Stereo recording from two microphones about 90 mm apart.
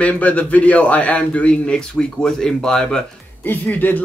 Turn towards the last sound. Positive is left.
turn(degrees=20)  # may be behind; listen again after turning